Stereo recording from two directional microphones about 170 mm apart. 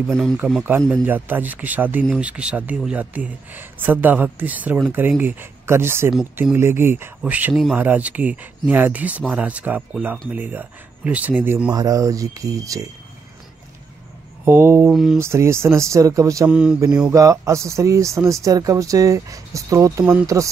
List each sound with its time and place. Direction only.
0.7 s speech: 15° right (ahead or behind)
14.4 s speech: 15° right (ahead or behind)
14.9 s mantra: centre (ahead or behind)
15.1 s speech: 15° right (ahead or behind)
16.4 s mantra: 5° right (ahead or behind)
17.1 s speech: 20° right (ahead or behind)